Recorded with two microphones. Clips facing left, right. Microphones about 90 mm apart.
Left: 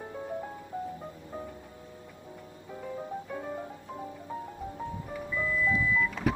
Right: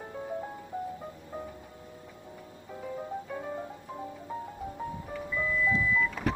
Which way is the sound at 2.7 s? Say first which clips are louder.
Even; centre (ahead or behind).